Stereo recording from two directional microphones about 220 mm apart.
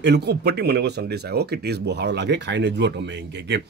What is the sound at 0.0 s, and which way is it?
Speech, 50° right (ahead or behind).